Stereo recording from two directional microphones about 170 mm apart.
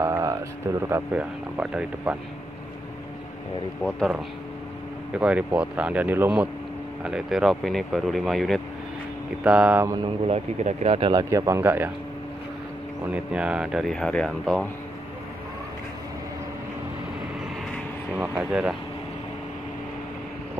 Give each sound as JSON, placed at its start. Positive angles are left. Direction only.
{"t": 0.0, "sound": "a sound", "side_deg": -20}
{"t": 0.8, "sound": "speech", "side_deg": -15}
{"t": 1.6, "sound": "speech", "side_deg": -5}
{"t": 5.2, "sound": "speech", "side_deg": -5}
{"t": 9.8, "sound": "a man's voice", "side_deg": -25}
{"t": 10.2, "sound": "a man's voice", "side_deg": -40}
{"t": 13.1, "sound": "speech", "side_deg": -5}
{"t": 18.1, "sound": "speech", "side_deg": -5}